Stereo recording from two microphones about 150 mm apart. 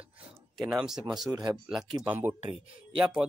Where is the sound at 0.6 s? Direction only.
Centre (ahead or behind).